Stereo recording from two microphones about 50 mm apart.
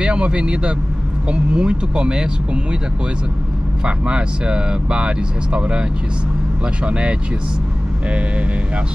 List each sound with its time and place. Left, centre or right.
0.0 s speech: right
3.8 s speech: centre